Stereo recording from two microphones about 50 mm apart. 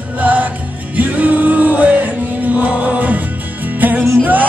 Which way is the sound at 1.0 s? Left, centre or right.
Right.